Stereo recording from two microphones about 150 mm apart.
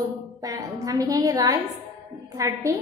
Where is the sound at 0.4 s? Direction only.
25° right (ahead or behind).